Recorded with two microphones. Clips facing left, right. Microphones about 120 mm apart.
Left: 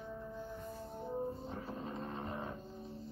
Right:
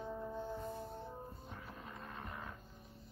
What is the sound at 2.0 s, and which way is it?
Vehicle, 30° left (ahead or behind).